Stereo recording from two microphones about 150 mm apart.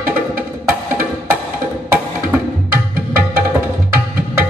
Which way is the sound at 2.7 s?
75° right (ahead or behind).